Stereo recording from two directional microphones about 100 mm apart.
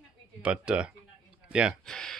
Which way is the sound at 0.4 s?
10° right (ahead or behind).